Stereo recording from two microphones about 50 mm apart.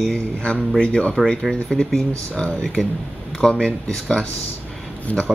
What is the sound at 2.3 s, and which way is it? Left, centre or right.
Speech, left.